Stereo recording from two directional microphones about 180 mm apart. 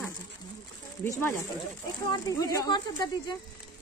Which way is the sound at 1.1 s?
10° left (ahead or behind).